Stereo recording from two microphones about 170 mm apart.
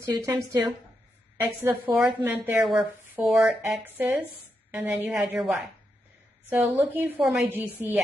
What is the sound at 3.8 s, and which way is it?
A woman's voice, 10° right (ahead or behind).